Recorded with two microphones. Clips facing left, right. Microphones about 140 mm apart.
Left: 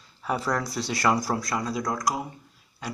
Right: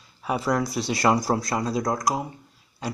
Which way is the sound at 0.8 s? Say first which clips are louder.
Right 2 dB; 25° right (ahead or behind).